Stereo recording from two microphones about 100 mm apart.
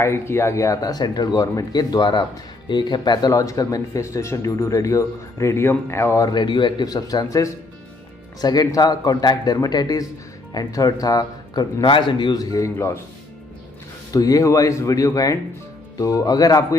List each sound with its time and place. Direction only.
0.0 s speech: 25° left (ahead or behind)
6.1 s speech: 45° left (ahead or behind); by 13.0 s 25° left (ahead or behind)
14.1 s speech: 35° left (ahead or behind)